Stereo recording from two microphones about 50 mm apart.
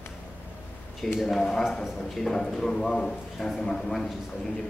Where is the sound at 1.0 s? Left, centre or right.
Centre.